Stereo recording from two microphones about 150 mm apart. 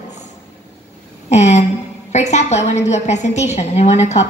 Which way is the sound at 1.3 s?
50° left (ahead or behind).